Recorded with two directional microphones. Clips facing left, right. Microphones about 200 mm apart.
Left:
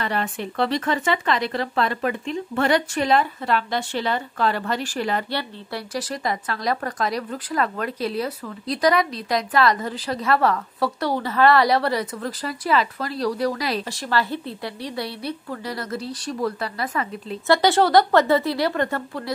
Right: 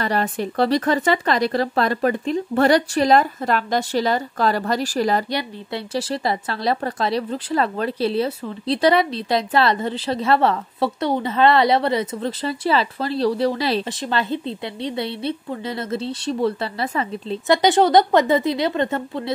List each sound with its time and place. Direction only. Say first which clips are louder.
0.0 s speech: right 4 dB; 40° right (ahead or behind)
5.3 s speech: right 3 dB; 20° right (ahead or behind)